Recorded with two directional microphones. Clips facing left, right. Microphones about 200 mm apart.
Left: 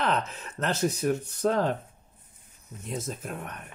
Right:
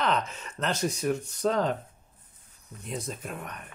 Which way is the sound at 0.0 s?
5° left (ahead or behind).